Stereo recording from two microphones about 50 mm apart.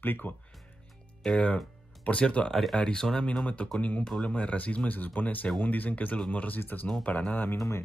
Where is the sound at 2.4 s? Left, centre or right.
Centre.